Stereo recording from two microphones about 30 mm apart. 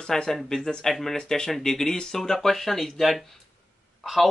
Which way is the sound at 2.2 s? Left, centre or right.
Centre.